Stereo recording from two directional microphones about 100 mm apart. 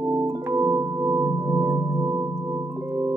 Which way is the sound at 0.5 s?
25° right (ahead or behind).